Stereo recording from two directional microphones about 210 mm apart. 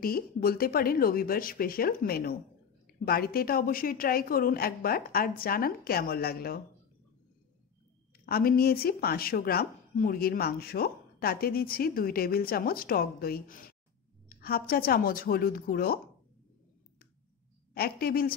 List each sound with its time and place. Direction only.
0.0 s speech: 45° left (ahead or behind)
8.3 s speech: 45° left (ahead or behind)
17.7 s speech: 45° left (ahead or behind)